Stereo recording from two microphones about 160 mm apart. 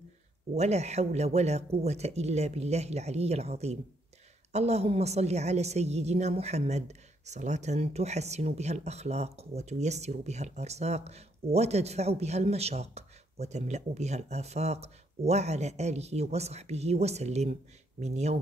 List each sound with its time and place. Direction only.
0.6 s a woman's voice: 45° right (ahead or behind)